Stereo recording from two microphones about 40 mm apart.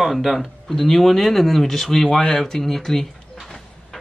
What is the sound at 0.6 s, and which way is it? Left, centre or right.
Speech, centre.